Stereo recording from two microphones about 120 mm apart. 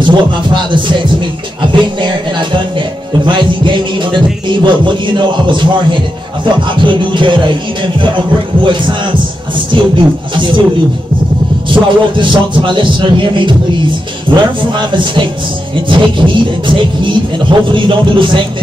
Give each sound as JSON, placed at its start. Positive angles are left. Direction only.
{"t": 0.0, "sound": "speech", "side_deg": -40}
{"t": 9.7, "sound": "speech", "side_deg": -45}
{"t": 11.7, "sound": "speech", "side_deg": -45}
{"t": 15.9, "sound": "speech", "side_deg": -45}